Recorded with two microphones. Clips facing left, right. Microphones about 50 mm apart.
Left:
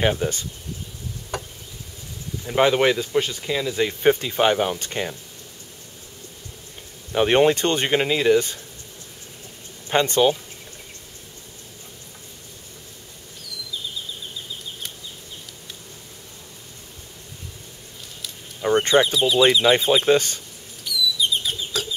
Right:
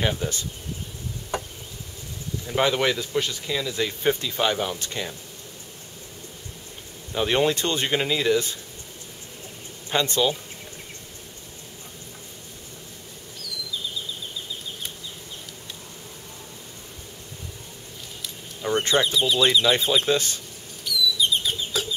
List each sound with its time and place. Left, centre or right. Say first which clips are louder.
0.0 s speech: left 5 dB; left
1.3 s insect: right 1 dB; centre
2.4 s speech: left 4 dB; centre; by 5.1 s left
7.1 s speech: left 5 dB; left
7.9 s speech: left 4 dB; centre
9.8 s speech: left 5 dB; left
18.6 s a sound: left 5 dB; left
19.1 s speech: left 3 dB; centre
19.6 s speech: left 4 dB; left
20.1 s speech: left 5 dB; left
20.8 s bird: even; centre